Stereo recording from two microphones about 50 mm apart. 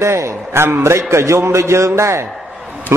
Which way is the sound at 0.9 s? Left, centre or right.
Right.